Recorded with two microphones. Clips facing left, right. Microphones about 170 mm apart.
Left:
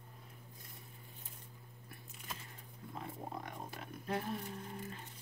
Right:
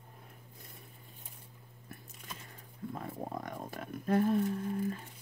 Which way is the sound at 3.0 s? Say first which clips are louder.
Right 3 dB; 50° right (ahead or behind).